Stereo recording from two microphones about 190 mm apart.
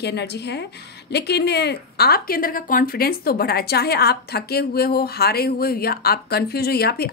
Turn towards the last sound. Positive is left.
turn(degrees=55)  # may be behind; listen again after turning